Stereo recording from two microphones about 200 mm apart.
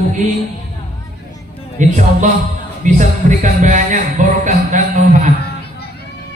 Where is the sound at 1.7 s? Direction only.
40° right (ahead or behind).